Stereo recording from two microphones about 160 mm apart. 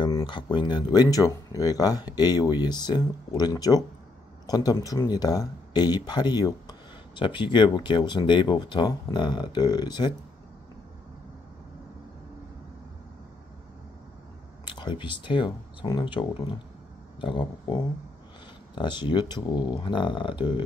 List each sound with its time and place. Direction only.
0.0 s speech: 30° left (ahead or behind)
14.6 s speech: 30° left (ahead or behind)
18.8 s speech: 30° left (ahead or behind)